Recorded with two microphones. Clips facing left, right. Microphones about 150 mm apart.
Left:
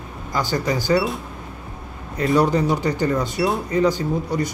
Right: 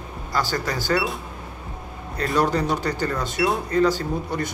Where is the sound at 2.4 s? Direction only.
15° left (ahead or behind).